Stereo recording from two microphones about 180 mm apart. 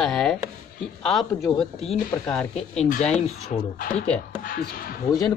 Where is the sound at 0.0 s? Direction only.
Centre (ahead or behind).